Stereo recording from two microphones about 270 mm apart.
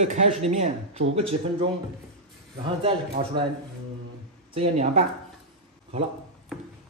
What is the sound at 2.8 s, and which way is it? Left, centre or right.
Speech, centre.